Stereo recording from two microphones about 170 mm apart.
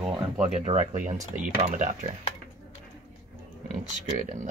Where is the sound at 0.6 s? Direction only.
45° right (ahead or behind).